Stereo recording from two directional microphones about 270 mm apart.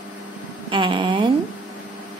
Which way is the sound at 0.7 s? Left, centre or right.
Centre.